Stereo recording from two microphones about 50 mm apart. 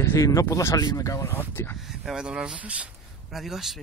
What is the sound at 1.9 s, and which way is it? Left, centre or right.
Speech, centre.